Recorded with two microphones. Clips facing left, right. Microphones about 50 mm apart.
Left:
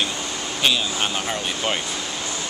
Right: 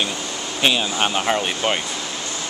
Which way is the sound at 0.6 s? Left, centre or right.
Right.